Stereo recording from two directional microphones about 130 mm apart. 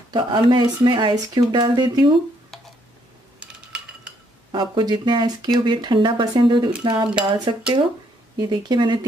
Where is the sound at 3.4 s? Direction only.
10° right (ahead or behind).